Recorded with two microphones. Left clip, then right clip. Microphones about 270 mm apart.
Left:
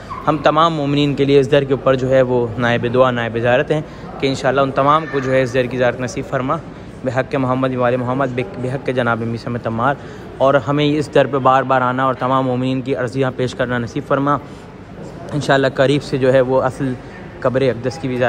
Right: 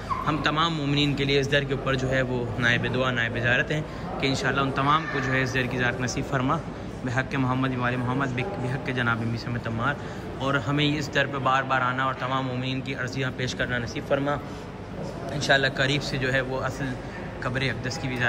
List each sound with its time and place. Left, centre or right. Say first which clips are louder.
0.2 s a man's voice: left 13 dB; centre
15.3 s a man's voice: left 8 dB; centre